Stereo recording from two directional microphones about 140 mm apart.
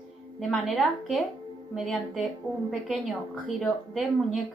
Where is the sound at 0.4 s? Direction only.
Centre (ahead or behind).